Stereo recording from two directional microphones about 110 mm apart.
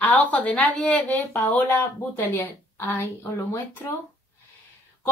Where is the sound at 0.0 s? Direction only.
15° left (ahead or behind).